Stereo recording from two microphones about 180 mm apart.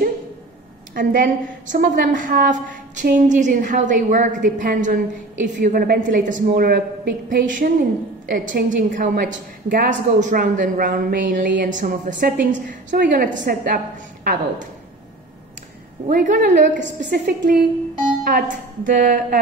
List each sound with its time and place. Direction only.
0.9 s a woman's voice: 50° right (ahead or behind)
16.1 s a woman's voice: 50° right (ahead or behind)